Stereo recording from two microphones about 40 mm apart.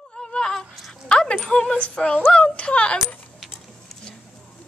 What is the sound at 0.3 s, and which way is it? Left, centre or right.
Whimper, left.